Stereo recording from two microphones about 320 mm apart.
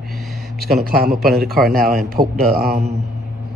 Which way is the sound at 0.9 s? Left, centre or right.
Right.